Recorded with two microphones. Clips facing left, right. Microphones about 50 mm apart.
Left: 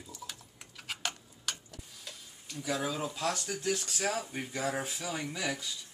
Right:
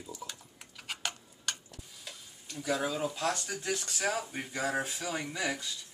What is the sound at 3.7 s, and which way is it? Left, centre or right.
Speech, centre.